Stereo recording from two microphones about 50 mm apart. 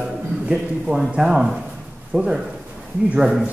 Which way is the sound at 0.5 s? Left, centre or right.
Centre.